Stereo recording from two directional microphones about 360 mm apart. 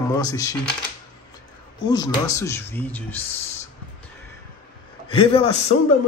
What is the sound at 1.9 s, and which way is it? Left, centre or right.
Speech, centre.